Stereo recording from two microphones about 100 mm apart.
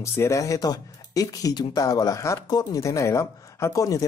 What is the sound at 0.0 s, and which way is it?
Speech, 30° left (ahead or behind).